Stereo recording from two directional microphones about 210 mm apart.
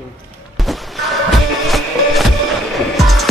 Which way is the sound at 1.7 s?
Centre (ahead or behind).